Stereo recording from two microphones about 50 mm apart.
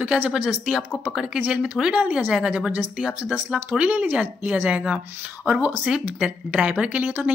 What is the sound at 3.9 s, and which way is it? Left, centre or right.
Speech, right.